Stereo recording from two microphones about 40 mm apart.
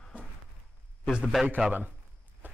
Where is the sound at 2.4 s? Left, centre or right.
Right.